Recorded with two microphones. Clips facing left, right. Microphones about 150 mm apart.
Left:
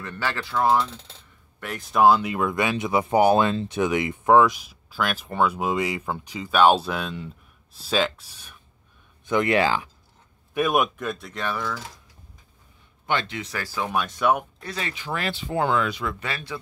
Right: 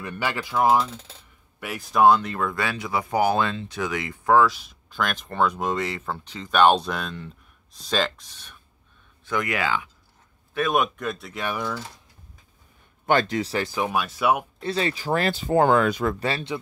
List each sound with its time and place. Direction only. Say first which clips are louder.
0.0 s speech: right 1 dB; 15° right (ahead or behind)
0.7 s speech: right 1 dB; centre (ahead or behind)
9.2 s speech: left 5 dB; 25° left (ahead or behind)
10.5 s speech: left 1 dB; 10° left (ahead or behind)
11.4 s speech: right 1 dB; 15° right (ahead or behind)
13.0 s speech: right 6 dB; 45° right (ahead or behind)
13.7 s speech: right 3 dB; 15° right (ahead or behind)
13.9 s speech: left 1 dB; 5° right (ahead or behind)
14.6 s speech: right 7 dB; 30° right (ahead or behind)